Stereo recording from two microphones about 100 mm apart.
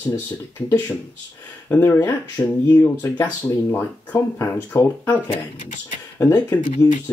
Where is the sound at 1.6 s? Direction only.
25° left (ahead or behind).